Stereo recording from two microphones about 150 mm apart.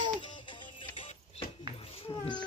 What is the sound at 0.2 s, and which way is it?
Music, 30° left (ahead or behind).